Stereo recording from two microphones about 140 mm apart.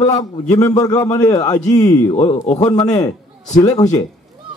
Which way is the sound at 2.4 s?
55° left (ahead or behind).